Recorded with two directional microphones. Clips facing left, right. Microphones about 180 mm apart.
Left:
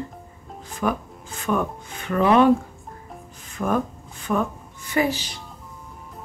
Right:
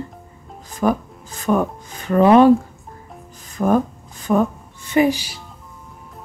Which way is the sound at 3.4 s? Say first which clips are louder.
Right 6 dB; 35° right (ahead or behind).